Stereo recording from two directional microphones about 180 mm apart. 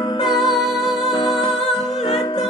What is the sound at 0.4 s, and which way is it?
Music, centre (ahead or behind).